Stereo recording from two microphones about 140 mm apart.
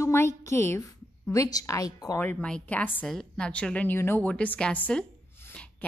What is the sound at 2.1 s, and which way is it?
A woman's voice, 10° left (ahead or behind).